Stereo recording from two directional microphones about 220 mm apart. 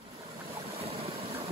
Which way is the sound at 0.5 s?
25° right (ahead or behind).